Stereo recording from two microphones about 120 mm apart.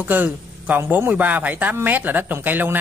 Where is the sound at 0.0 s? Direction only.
15° right (ahead or behind).